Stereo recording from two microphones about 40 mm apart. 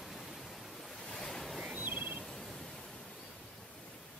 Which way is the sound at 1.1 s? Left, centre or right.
Centre.